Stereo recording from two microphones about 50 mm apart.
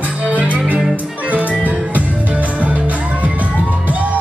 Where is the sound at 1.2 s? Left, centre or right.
Right.